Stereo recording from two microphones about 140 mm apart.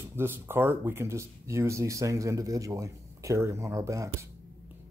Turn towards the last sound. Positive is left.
turn(degrees=-20)  # may be behind; listen again after turning